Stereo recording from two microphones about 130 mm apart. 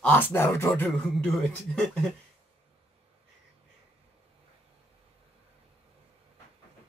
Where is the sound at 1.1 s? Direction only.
5° left (ahead or behind).